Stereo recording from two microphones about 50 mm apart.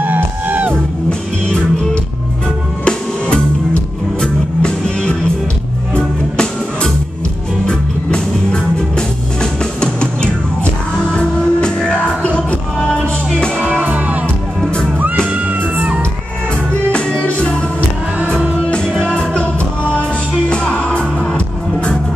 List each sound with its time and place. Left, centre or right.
0.0 s music: right
2.8 s music: centre
13.6 s music: right
15.3 s music: right
16.9 s music: left
19.1 s music: left